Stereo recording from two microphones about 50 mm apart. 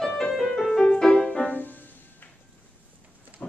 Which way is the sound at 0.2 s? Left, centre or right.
Centre.